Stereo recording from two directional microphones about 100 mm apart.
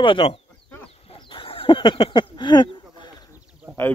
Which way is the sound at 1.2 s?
60° left (ahead or behind).